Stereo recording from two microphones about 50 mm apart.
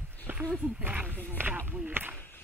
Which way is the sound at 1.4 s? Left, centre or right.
Right.